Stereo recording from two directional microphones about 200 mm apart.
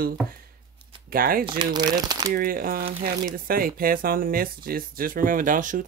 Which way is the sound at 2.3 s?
45° right (ahead or behind).